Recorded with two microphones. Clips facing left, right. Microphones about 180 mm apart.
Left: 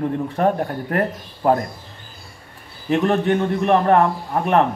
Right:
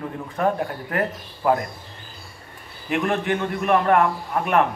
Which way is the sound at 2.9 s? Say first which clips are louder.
Left 5 dB; 35° left (ahead or behind).